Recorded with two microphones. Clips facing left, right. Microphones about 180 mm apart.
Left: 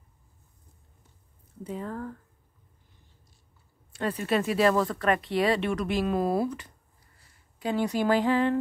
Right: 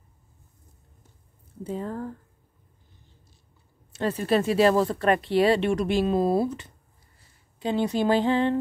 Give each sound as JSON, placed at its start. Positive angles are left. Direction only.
{"t": 1.6, "sound": "speech", "side_deg": -30}
{"t": 3.9, "sound": "speech", "side_deg": -30}